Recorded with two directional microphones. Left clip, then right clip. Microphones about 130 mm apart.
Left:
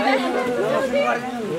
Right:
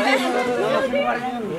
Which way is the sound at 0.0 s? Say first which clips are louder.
Right 1 dB; 30° right (ahead or behind).